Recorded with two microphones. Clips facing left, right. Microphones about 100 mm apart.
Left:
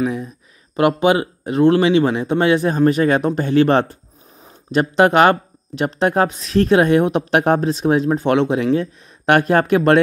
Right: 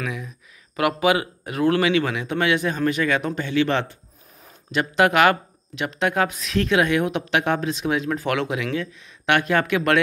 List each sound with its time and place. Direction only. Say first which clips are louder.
0.0 s speech: left 9 dB; 35° left (ahead or behind)